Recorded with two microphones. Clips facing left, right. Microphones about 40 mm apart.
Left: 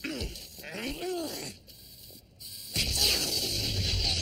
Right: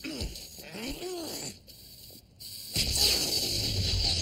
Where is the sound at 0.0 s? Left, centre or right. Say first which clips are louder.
Left 2 dB; centre.